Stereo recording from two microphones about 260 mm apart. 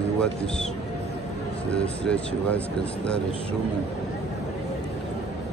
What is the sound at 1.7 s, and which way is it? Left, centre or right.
Speech, centre.